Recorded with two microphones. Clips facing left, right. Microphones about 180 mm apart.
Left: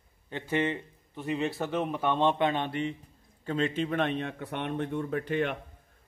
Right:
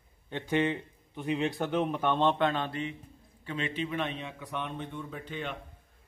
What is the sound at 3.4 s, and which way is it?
Speech, 45° left (ahead or behind).